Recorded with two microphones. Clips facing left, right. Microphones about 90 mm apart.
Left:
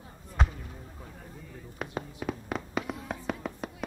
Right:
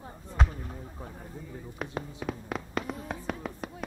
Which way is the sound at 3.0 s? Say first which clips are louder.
Left 1 dB; centre (ahead or behind).